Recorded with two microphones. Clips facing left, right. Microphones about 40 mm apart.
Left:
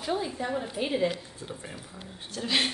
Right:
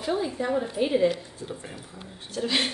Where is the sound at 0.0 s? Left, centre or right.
Centre.